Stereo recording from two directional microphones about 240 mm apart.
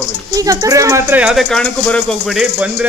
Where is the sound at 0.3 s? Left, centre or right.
Centre.